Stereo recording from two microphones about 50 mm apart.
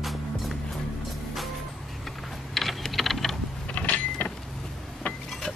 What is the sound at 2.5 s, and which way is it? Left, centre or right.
Typing, centre.